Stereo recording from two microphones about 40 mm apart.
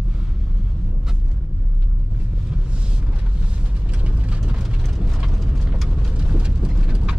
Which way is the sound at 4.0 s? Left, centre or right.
Right.